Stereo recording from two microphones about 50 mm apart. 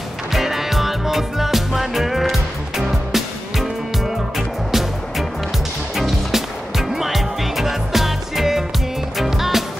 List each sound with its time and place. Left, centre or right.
0.3 s music: centre